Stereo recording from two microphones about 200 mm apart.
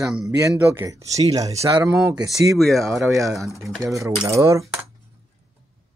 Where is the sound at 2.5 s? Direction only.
Centre (ahead or behind).